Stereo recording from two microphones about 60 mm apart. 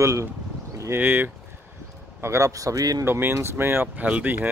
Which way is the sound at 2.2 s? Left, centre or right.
Right.